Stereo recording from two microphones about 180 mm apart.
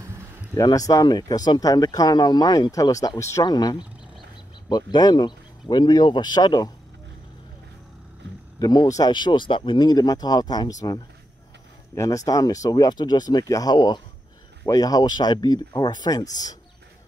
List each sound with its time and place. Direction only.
0.6 s speech: 20° left (ahead or behind)
8.5 s speech: 20° left (ahead or behind)